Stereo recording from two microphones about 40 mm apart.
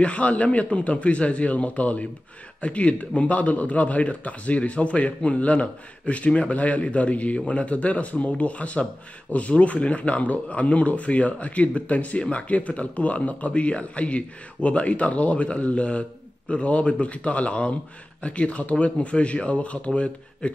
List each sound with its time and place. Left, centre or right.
0.0 s a man's voice: left
13.5 s a man's voice: left